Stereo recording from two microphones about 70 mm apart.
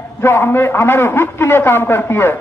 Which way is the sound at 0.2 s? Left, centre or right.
Left.